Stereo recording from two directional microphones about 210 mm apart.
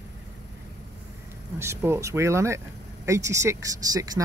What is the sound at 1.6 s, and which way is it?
Speech, 10° right (ahead or behind).